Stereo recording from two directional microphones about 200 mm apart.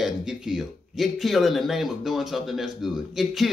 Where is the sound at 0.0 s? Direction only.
Centre (ahead or behind).